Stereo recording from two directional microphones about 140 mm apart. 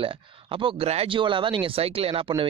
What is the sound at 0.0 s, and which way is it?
Speech, 40° right (ahead or behind).